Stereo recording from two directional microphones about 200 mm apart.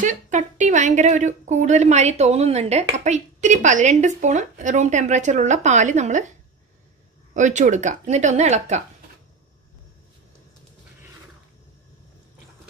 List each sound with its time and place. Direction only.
0.0 s a woman's voice: 40° right (ahead or behind)
7.3 s a woman's voice: 35° right (ahead or behind)